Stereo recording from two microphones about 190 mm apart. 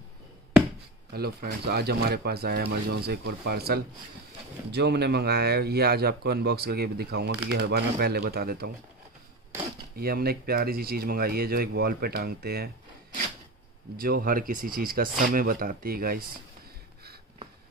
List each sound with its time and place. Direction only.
1.1 s speech: 55° right (ahead or behind)
9.9 s speech: 55° right (ahead or behind)
13.9 s speech: 50° right (ahead or behind)